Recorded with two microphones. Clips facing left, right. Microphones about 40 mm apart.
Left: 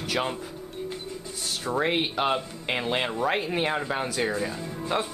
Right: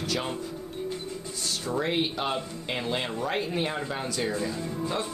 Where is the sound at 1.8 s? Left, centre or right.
Left.